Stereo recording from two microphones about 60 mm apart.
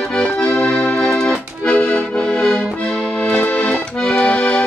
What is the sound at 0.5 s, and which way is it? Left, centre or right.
Music, centre.